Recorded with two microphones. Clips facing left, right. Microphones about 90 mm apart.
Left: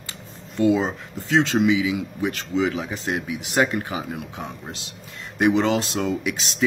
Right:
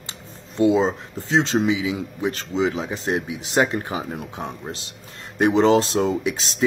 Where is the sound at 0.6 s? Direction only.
25° right (ahead or behind).